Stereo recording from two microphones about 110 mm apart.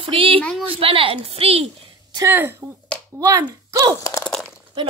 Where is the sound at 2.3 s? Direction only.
20° right (ahead or behind).